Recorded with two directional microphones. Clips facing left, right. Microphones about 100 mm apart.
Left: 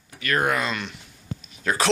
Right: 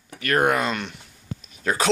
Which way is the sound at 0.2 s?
50° right (ahead or behind).